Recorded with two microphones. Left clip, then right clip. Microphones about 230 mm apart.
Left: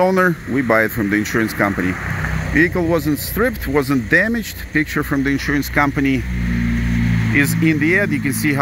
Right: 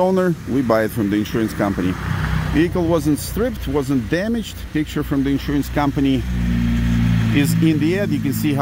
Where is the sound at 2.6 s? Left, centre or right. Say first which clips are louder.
Left 2 dB; centre.